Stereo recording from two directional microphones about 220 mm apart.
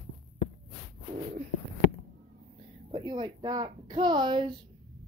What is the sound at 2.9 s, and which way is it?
A woman's voice, 20° right (ahead or behind).